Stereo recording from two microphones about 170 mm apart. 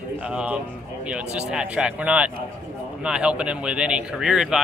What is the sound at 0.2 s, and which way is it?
Speech, 5° right (ahead or behind).